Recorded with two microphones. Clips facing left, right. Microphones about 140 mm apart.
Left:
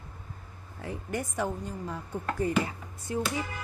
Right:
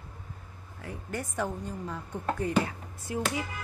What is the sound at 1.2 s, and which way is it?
A woman's voice, 10° left (ahead or behind).